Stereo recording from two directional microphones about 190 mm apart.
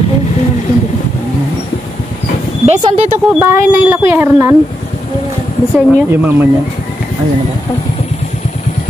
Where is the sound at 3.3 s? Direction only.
10° right (ahead or behind).